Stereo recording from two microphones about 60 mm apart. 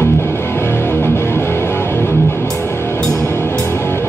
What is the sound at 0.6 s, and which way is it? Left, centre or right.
Music, left.